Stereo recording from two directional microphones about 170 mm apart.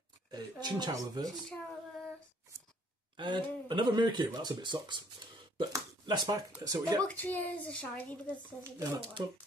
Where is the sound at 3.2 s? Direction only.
25° right (ahead or behind).